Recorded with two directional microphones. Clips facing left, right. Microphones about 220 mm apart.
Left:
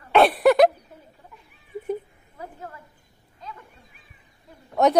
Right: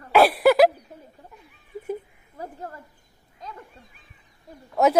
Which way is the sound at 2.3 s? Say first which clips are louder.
Right 2 dB; 40° right (ahead or behind).